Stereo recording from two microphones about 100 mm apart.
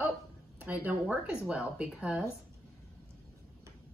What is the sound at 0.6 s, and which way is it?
Speech, 15° right (ahead or behind).